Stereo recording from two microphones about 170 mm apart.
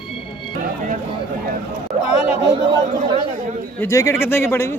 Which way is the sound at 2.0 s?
35° left (ahead or behind).